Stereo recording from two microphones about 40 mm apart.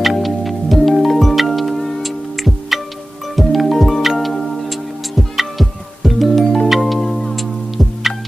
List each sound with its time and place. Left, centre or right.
0.0 s music: centre